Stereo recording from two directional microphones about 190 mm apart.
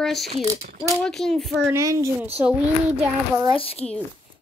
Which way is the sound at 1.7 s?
15° right (ahead or behind).